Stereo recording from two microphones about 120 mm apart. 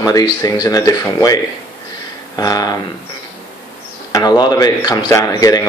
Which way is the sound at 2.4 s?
35° left (ahead or behind).